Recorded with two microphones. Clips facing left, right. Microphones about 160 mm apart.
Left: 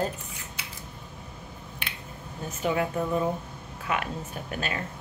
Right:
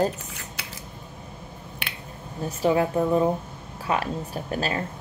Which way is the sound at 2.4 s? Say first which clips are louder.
Right 5 dB; 30° right (ahead or behind).